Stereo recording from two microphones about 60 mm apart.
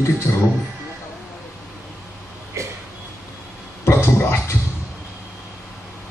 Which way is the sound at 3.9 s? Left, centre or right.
Left.